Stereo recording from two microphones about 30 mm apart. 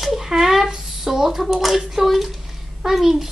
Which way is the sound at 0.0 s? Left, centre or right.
Centre.